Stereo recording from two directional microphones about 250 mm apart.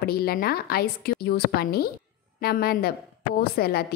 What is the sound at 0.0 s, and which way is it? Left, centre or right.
A woman's voice, left.